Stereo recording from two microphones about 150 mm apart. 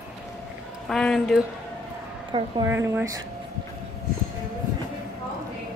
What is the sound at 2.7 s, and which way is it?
Speech, 15° right (ahead or behind).